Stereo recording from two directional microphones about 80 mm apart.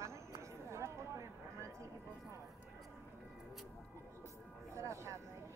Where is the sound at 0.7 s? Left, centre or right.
Right.